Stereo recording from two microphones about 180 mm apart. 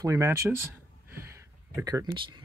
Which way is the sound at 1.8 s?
15° right (ahead or behind).